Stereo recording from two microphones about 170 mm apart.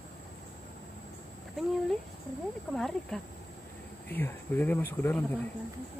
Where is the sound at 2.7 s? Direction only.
Centre (ahead or behind).